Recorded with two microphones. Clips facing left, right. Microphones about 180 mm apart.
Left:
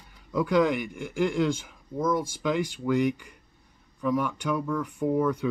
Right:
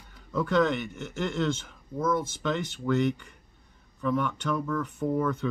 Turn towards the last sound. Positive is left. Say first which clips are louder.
# left 2 dB
turn(degrees=10)  # may be behind; listen again after turning